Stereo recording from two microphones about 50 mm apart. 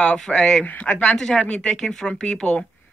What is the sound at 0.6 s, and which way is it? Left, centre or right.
Speech, left.